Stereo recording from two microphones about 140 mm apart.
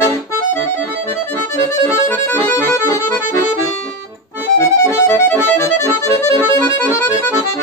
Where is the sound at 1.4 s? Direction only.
20° left (ahead or behind).